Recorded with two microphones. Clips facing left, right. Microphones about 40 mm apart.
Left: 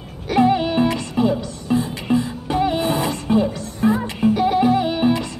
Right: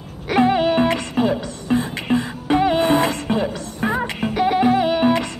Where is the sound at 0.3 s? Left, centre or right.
Right.